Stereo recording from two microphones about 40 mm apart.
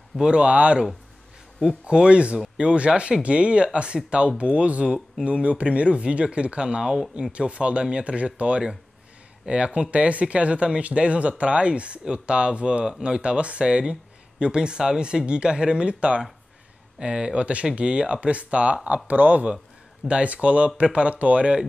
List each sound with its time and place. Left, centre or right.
0.2 s speech: right
1.9 s speech: right
20.1 s speech: right